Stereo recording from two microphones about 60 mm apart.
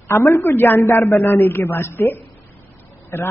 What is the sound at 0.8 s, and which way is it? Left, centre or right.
A woman's voice, left.